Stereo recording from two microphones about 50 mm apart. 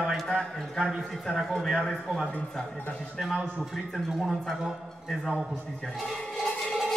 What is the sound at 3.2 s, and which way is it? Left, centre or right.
Speech, centre.